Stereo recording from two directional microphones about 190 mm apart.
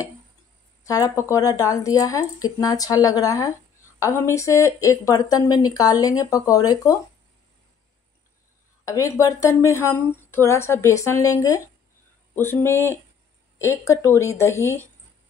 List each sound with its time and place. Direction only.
0.8 s speech: 20° left (ahead or behind)
8.8 s speech: 15° left (ahead or behind)